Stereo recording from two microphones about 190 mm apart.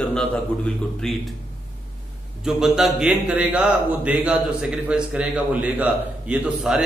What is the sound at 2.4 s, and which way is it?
A man's voice, centre (ahead or behind).